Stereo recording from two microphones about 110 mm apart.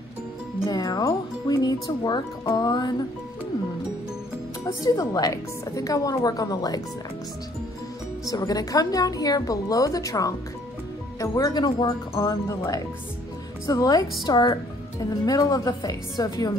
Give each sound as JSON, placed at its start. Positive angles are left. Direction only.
{"t": 0.7, "sound": "speech", "side_deg": 35}
{"t": 4.8, "sound": "speech", "side_deg": 35}
{"t": 8.3, "sound": "speech", "side_deg": 35}
{"t": 12.2, "sound": "speech", "side_deg": 25}